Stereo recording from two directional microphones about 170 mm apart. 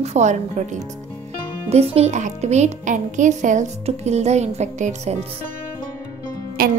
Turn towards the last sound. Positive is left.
turn(degrees=-60)  # may be behind; listen again after turning